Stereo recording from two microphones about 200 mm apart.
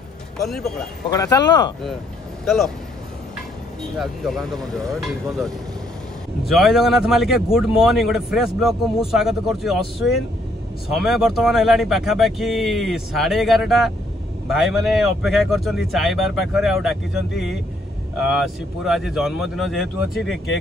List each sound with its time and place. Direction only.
0.5 s speech: centre (ahead or behind)
1.1 s speech: 20° left (ahead or behind)
2.4 s speech: centre (ahead or behind)
4.0 s speech: centre (ahead or behind)